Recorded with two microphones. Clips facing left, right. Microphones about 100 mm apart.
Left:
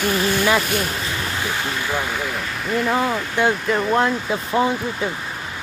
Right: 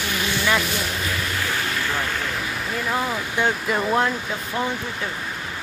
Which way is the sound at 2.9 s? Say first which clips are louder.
Left 4 dB; 10° left (ahead or behind).